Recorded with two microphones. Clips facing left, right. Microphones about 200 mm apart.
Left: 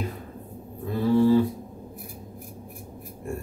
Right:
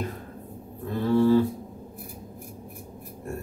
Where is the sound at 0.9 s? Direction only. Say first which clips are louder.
Left 1 dB; 10° left (ahead or behind).